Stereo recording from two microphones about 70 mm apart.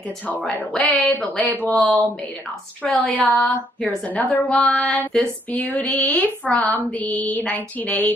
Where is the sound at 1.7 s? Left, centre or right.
Centre.